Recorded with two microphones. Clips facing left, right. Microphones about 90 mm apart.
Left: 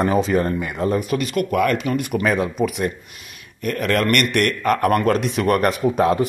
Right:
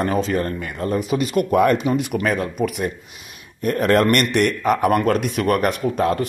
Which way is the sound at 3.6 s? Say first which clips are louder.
Right 4 dB; 30° right (ahead or behind).